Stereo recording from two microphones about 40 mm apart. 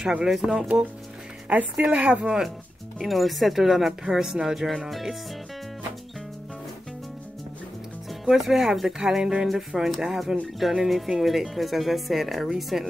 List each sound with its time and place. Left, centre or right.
0.0 s speech: centre
1.5 s a woman's voice: right
3.1 s speech: centre
8.3 s speech: centre